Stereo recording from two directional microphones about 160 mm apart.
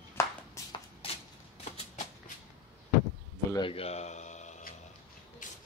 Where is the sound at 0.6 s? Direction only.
20° left (ahead or behind).